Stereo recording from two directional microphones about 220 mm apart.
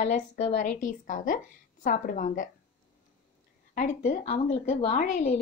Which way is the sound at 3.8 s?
35° left (ahead or behind).